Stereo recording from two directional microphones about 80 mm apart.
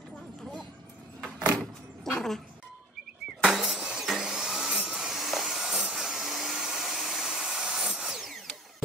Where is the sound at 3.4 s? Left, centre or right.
Centre.